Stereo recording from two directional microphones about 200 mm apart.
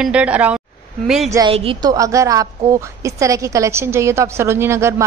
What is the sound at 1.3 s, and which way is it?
A woman's voice, 20° right (ahead or behind).